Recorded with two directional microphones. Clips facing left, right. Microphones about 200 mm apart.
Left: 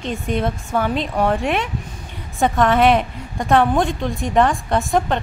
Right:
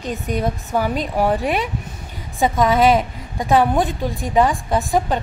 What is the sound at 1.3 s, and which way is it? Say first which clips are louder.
A woman's voice: even; centre (ahead or behind).